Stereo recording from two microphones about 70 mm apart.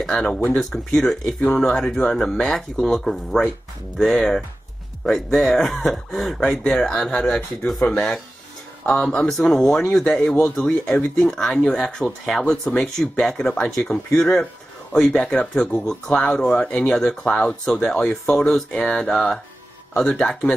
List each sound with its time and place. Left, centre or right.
0.1 s speech: centre
11.1 s speech: centre